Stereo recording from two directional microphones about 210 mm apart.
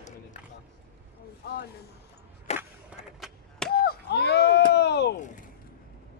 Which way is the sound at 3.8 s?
50° left (ahead or behind).